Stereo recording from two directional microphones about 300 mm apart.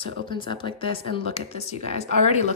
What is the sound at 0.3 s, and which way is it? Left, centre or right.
Speech, centre.